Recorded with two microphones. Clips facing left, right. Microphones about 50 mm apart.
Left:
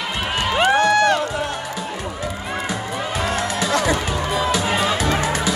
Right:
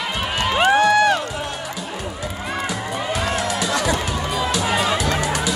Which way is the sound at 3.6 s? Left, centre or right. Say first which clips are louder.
Left 2 dB; left.